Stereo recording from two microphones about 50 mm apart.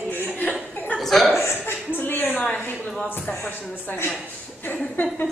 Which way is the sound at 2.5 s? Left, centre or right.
Left.